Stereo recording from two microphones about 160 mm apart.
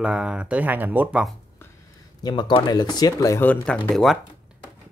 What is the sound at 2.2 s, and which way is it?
Speech, 25° left (ahead or behind).